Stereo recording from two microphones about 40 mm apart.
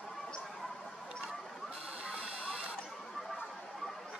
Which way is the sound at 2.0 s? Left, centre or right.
Right.